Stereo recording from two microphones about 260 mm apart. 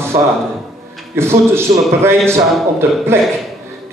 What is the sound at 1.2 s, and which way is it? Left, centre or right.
A man's voice, centre.